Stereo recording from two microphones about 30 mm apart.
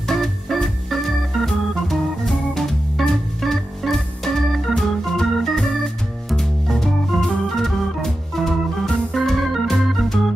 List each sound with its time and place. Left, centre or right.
0.1 s organ: centre
3.0 s organ: centre
3.8 s organ: centre
6.3 s music: centre
7.5 s organ: centre